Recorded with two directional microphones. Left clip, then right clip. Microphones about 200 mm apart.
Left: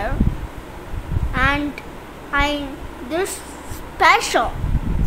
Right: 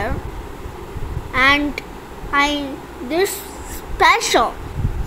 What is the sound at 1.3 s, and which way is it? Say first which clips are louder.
A woman's voice: right 5 dB; 15° right (ahead or behind).